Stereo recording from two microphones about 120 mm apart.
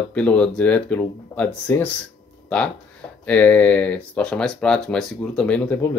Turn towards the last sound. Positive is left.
turn(degrees=10)  # may be behind; listen again after turning